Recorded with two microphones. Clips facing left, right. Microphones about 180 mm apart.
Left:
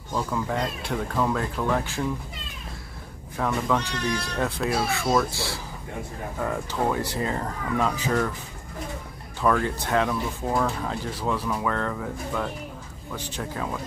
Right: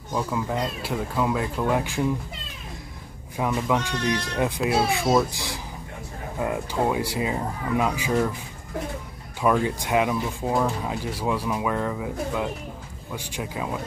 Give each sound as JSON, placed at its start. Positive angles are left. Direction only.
{"t": 0.1, "sound": "speech", "side_deg": -10}
{"t": 3.3, "sound": "speech", "side_deg": -15}
{"t": 9.4, "sound": "speech", "side_deg": -10}